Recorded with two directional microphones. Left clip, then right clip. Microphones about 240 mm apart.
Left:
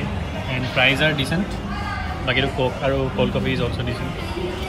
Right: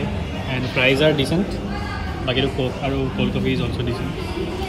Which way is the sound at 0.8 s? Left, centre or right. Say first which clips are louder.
Right 1 dB; right.